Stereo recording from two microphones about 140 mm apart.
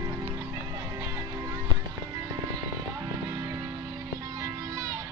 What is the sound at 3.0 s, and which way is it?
Music, 25° right (ahead or behind).